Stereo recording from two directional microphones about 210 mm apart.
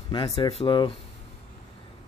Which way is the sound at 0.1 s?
20° left (ahead or behind).